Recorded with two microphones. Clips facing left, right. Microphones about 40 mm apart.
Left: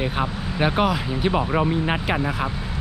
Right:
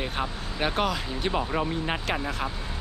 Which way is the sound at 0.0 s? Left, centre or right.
Centre.